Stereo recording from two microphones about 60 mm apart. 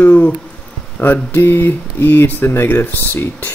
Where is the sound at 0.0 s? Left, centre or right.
Left.